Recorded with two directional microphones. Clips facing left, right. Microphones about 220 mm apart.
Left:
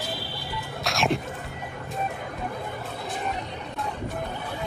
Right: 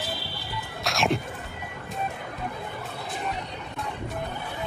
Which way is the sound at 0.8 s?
Centre (ahead or behind).